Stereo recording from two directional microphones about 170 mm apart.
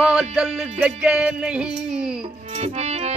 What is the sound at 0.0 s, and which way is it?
Music, 5° right (ahead or behind).